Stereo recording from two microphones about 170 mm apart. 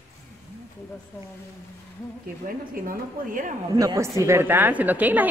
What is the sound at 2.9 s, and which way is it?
Speech, 50° right (ahead or behind).